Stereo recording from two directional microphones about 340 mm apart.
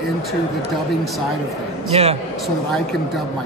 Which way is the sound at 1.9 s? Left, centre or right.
Centre.